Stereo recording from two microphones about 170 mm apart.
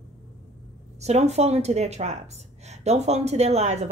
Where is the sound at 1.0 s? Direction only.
40° right (ahead or behind).